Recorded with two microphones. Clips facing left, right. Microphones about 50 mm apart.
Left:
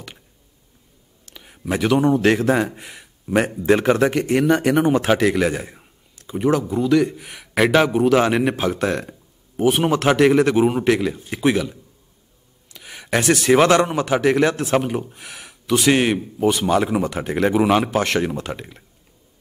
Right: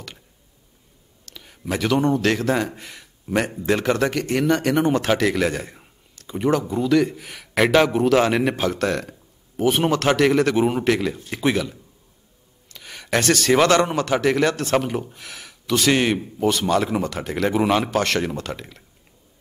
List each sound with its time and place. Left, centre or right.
1.3 s a sound: centre
1.7 s a man's voice: centre
12.6 s gasp: centre
13.9 s a man's voice: centre
17.6 s a man's voice: centre